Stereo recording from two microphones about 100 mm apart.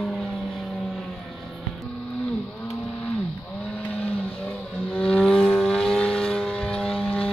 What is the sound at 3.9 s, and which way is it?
Vehicle, 10° right (ahead or behind).